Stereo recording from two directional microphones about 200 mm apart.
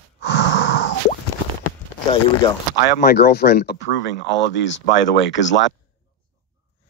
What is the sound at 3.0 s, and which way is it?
Speech, 55° left (ahead or behind).